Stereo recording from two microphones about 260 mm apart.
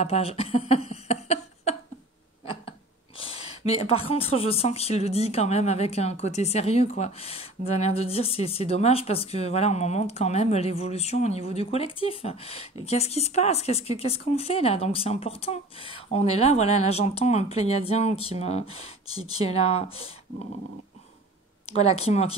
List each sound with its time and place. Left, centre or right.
0.0 s a sound: left
3.2 s speech: left
21.6 s speech: left